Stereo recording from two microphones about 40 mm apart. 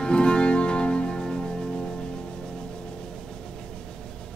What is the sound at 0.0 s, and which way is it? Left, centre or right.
Music, left.